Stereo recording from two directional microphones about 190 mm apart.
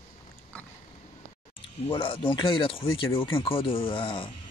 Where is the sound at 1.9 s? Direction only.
25° left (ahead or behind).